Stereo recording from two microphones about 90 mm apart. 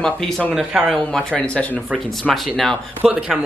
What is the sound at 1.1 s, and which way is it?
Speech, 10° left (ahead or behind).